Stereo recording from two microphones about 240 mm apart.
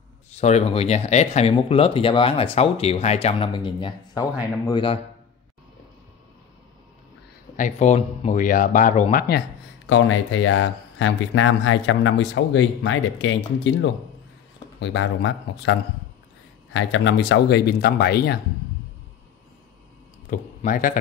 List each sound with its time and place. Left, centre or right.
0.3 s speech: left
7.5 s a man's voice: left
9.8 s speech: left
20.2 s speech: left